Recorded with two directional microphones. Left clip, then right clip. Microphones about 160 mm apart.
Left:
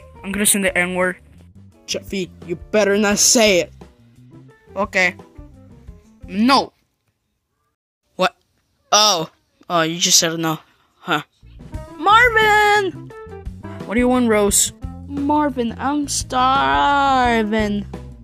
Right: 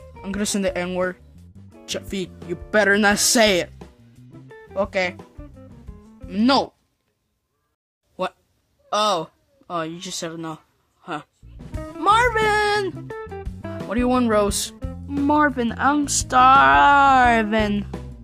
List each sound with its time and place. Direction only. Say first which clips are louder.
0.2 s speech: left 5 dB; 15° right (ahead or behind)
1.0 s music: left 5 dB; centre (ahead or behind)
8.8 s speech: left 6 dB; 20° left (ahead or behind)
11.5 s music: right 1 dB; centre (ahead or behind)
12.1 s speech: left 5 dB; 10° left (ahead or behind)
12.8 s speech: left 3 dB; centre (ahead or behind)
14.8 s music: right 1 dB; centre (ahead or behind)
15.1 s speech: even; centre (ahead or behind)